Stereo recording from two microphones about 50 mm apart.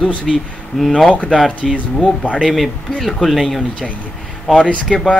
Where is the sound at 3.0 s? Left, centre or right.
Centre.